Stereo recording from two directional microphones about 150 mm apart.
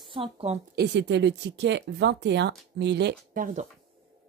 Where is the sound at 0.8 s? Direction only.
90° right.